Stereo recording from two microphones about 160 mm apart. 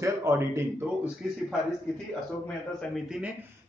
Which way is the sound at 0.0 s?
20° right (ahead or behind).